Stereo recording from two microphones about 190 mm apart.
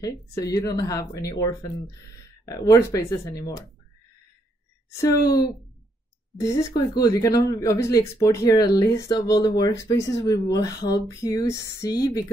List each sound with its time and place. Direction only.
0.0 s speech: 20° left (ahead or behind)
4.9 s speech: 20° left (ahead or behind)